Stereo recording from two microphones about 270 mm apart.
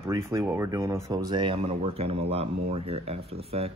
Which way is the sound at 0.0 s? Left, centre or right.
Centre.